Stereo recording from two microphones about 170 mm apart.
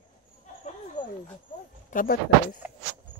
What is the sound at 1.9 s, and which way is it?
Speech, 55° left (ahead or behind).